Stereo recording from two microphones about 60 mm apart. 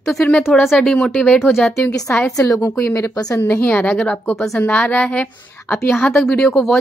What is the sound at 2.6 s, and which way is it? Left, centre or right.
Speech, left.